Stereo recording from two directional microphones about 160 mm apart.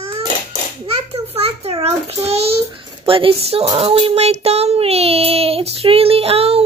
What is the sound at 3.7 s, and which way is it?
Child singing, 35° right (ahead or behind).